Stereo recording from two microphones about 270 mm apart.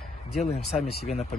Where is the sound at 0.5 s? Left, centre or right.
Left.